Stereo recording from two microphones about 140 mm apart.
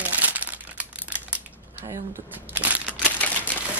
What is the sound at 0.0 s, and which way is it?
Crumpling, 10° right (ahead or behind).